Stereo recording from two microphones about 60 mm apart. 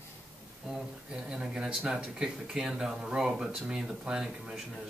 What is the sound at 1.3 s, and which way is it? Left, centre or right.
Speech, centre.